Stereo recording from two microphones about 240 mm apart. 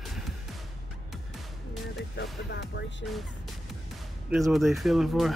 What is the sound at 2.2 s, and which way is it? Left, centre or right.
Speech, left.